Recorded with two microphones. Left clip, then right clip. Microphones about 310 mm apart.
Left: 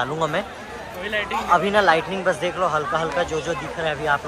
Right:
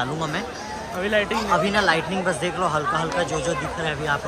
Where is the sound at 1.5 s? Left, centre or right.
Centre.